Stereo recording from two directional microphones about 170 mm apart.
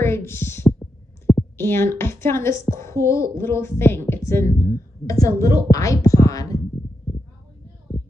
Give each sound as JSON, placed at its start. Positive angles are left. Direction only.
{"t": 0.0, "sound": "heart murmur", "side_deg": 15}
{"t": 2.6, "sound": "speech", "side_deg": 15}